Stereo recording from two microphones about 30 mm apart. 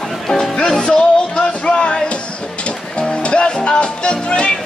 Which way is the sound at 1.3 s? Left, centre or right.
Left.